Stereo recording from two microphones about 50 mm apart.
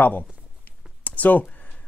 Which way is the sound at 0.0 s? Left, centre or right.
Left.